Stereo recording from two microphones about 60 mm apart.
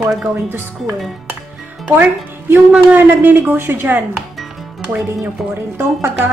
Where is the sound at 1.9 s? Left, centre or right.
Right.